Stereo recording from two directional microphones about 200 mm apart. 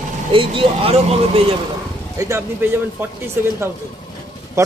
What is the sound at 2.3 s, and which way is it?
Speech, 10° right (ahead or behind).